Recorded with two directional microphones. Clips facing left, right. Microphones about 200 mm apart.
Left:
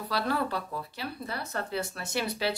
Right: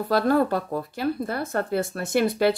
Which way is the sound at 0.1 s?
50° right (ahead or behind).